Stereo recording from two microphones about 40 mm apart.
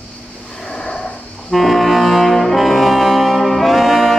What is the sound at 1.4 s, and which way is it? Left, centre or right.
Brass instrument, centre.